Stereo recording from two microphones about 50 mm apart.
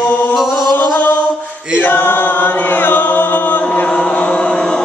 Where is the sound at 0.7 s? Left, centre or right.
Left.